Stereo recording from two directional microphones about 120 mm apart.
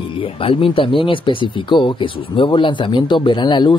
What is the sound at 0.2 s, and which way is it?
Speech, 50° left (ahead or behind).